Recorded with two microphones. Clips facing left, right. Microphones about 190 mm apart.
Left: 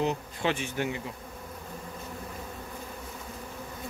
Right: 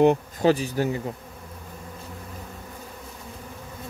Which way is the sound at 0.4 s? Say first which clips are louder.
Right 8 dB; 35° right (ahead or behind).